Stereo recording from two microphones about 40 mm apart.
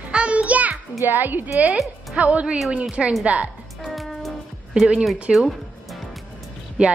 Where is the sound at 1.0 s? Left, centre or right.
Right.